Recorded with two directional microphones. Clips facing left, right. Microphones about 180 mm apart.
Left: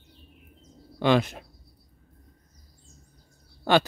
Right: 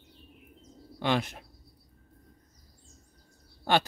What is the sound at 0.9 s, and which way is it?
Speech, 90° left.